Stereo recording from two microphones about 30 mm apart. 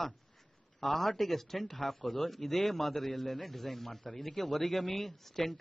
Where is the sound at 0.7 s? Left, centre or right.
Centre.